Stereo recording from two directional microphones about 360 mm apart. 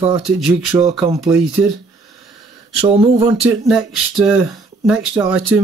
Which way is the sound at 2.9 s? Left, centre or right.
Centre.